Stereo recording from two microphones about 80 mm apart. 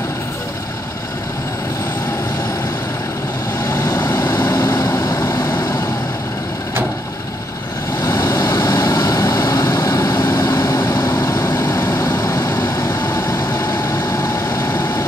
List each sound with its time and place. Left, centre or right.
3.7 s vehicle: left
8.0 s vehicle: left